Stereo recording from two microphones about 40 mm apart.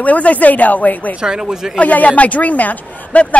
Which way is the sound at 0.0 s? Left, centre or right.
Left.